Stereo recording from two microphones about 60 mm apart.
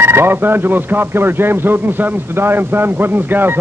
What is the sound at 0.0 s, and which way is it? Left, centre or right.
Speech, right.